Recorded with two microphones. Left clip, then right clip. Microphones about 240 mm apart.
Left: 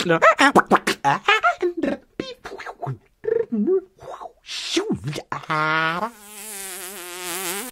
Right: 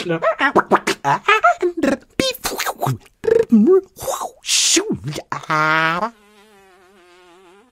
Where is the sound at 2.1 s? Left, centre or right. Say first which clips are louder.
Right 12 dB; right.